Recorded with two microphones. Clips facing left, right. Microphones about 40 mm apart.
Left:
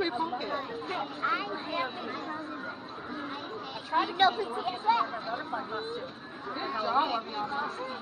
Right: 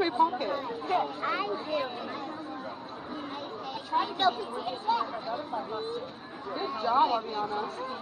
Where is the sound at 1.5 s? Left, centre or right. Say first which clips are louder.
Right 2 dB; left.